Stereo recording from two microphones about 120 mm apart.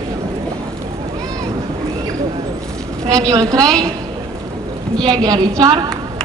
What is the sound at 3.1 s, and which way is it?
Speech, 30° right (ahead or behind).